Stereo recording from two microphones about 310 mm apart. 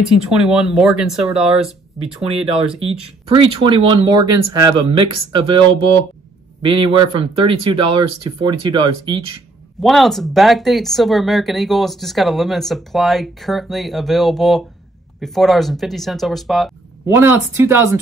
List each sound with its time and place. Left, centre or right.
0.0 s speech: centre
2.2 s speech: centre
9.8 s speech: centre